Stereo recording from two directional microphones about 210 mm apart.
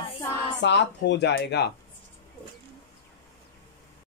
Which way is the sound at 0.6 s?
55° left (ahead or behind).